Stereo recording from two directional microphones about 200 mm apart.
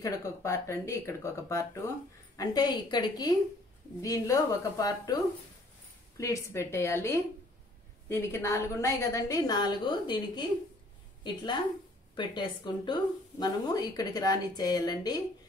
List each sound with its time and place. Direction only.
0.0 s a woman's voice: 15° left (ahead or behind)
6.1 s a woman's voice: 15° left (ahead or behind)
12.2 s speech: 25° left (ahead or behind)